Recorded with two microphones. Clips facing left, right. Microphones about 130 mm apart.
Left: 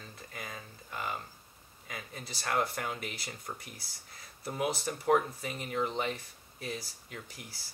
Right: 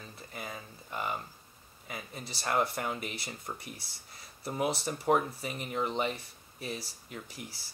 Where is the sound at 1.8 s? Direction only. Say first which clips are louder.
Right 2 dB; 5° right (ahead or behind).